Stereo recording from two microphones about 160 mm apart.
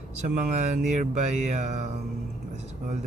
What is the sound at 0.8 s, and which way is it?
Speech, 50° right (ahead or behind).